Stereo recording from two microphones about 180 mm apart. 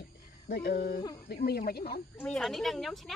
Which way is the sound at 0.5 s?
65° left (ahead or behind).